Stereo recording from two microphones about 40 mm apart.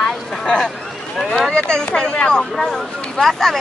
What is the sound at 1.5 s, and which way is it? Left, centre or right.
Speech, left.